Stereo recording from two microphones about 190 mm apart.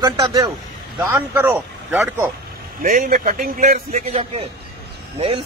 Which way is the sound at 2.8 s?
45° right (ahead or behind).